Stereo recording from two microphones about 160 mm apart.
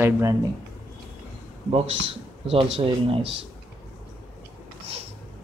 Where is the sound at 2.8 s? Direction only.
35° right (ahead or behind).